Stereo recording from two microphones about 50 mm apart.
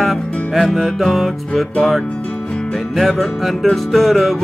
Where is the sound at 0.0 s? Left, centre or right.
Centre.